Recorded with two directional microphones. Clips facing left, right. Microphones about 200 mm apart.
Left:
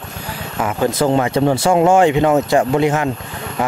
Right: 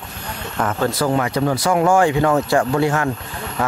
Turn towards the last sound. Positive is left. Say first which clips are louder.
# left 2 dB
turn(degrees=20)  # may be behind; listen again after turning